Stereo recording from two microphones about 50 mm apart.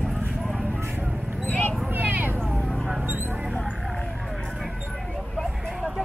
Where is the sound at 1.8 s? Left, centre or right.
Right.